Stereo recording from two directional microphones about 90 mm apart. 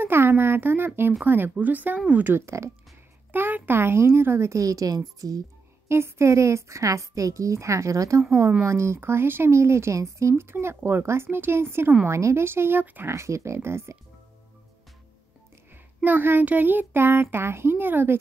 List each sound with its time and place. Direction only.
0.0 s a child's voice: 25° right (ahead or behind); by 5.4 s 45° right (ahead or behind)
5.9 s a woman's voice: 30° right (ahead or behind)
13.1 s a woman's voice: 35° right (ahead or behind)
15.7 s a child's voice: 20° right (ahead or behind)